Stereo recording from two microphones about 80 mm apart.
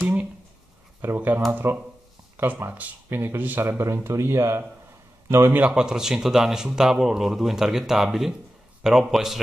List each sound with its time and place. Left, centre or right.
1.0 s speech: right
5.5 s speech: right
5.8 s a man's voice: centre